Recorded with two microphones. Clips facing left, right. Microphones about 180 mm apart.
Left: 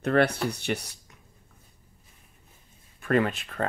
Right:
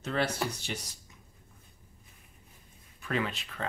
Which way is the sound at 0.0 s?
60° left (ahead or behind).